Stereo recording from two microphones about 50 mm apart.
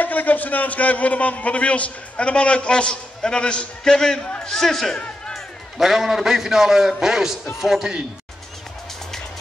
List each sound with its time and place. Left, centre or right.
0.0 s a man's voice: left; by 4.6 s centre
4.6 s a man's voice: centre
4.9 s music: left
5.8 s a man's voice: centre